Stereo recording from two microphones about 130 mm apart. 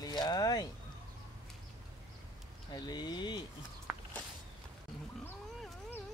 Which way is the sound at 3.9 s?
Centre (ahead or behind).